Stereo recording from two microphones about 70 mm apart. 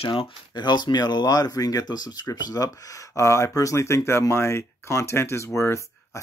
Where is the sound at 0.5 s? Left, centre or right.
Left.